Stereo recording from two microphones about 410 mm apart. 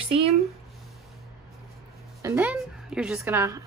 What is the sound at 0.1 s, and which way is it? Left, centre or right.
Speech, centre.